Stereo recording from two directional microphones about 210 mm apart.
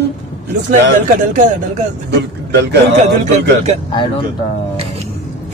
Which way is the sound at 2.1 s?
55° right (ahead or behind).